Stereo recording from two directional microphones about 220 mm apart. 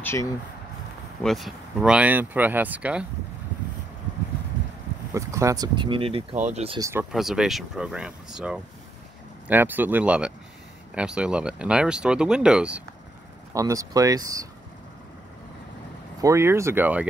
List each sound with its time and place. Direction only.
0.0 s a sound: 10° left (ahead or behind)
1.2 s speech: centre (ahead or behind)
5.1 s speech: 15° right (ahead or behind)
6.8 s speech: 10° right (ahead or behind)
13.5 s speech: 15° right (ahead or behind)
16.2 s speech: 15° right (ahead or behind)